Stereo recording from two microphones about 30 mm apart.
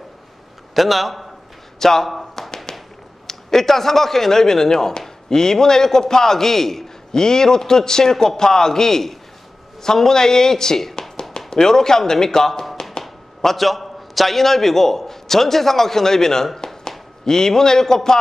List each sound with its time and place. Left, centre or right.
0.7 s a man's voice: centre
1.8 s a man's voice: centre
2.4 s tap: centre
3.3 s a man's voice: centre
7.1 s a man's voice: left
13.0 s a man's voice: centre
16.5 s a sound: left
17.2 s a man's voice: centre